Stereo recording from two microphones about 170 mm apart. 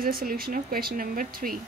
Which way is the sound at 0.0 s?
60° right (ahead or behind).